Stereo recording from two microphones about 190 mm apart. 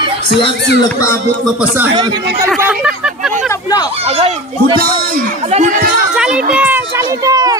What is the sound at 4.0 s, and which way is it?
Speech, 35° right (ahead or behind).